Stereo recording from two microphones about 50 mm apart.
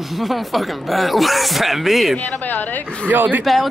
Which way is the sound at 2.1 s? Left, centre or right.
Left.